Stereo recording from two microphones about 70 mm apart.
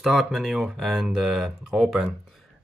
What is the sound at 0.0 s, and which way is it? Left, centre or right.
Speech, centre.